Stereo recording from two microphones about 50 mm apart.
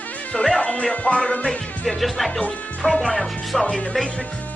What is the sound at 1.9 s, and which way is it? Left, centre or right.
Speech, centre.